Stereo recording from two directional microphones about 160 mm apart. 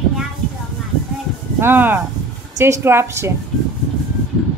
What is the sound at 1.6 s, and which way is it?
A woman's voice, 10° right (ahead or behind).